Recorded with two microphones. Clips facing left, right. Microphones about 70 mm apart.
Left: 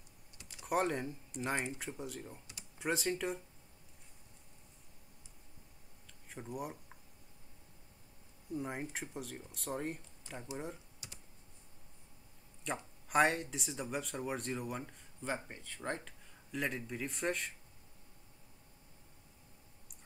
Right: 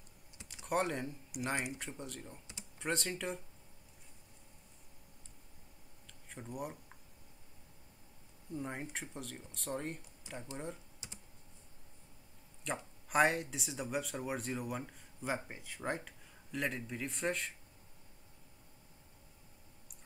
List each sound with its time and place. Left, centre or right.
0.7 s speech: centre
6.0 s a sound: centre
8.5 s speech: centre
10.3 s speech: centre
11.0 s computer keyboard: right
12.6 s speech: centre